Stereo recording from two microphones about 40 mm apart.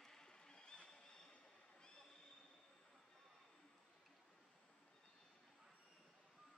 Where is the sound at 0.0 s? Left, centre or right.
Centre.